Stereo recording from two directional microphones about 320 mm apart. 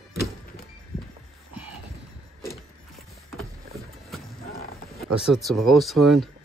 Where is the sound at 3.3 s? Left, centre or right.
Centre.